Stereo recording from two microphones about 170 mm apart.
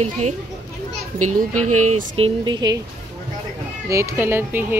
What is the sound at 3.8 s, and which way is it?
Speech, 15° right (ahead or behind).